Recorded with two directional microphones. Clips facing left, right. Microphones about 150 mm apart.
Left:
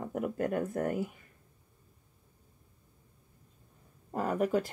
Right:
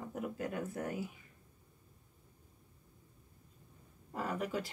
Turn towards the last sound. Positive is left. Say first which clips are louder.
# left 8 dB
turn(degrees=45)  # may be behind; listen again after turning